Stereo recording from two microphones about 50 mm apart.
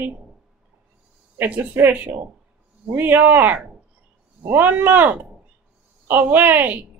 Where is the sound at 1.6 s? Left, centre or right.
Right.